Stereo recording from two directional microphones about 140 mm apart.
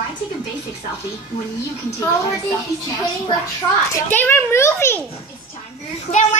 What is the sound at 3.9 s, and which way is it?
A child's voice, 15° left (ahead or behind).